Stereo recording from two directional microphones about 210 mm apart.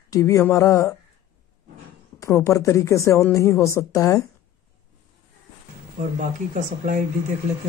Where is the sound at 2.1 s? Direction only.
15° left (ahead or behind).